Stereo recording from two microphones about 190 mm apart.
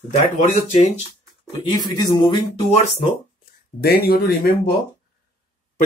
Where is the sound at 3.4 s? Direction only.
55° left (ahead or behind).